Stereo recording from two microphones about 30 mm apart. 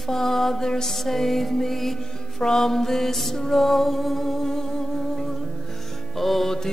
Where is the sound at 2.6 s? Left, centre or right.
Centre.